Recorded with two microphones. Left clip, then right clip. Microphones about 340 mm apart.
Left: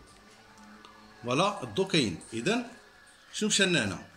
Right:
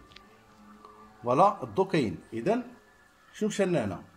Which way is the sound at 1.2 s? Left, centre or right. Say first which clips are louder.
Right 5 dB; right.